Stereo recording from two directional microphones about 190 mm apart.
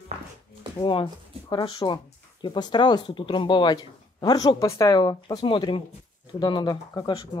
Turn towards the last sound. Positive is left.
turn(degrees=25)  # may be behind; listen again after turning